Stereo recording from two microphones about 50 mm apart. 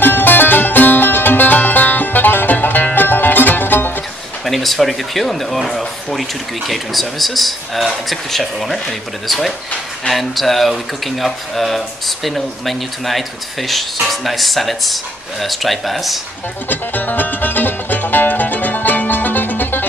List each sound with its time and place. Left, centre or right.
0.0 s music: left
4.5 s speech: centre
16.6 s music: left